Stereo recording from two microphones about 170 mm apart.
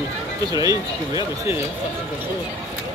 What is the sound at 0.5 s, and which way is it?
Speech, 20° right (ahead or behind).